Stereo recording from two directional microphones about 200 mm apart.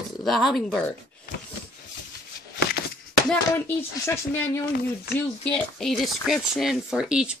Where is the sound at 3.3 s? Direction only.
10° left (ahead or behind).